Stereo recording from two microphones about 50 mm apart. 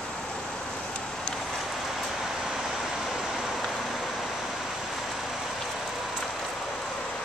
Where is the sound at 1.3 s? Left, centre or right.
Centre.